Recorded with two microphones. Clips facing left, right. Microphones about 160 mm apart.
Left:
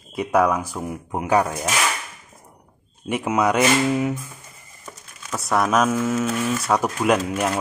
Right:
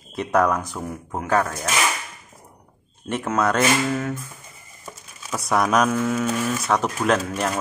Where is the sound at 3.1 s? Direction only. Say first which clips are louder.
Left 2 dB; 10° left (ahead or behind).